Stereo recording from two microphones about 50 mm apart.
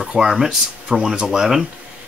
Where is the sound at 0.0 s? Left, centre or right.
Centre.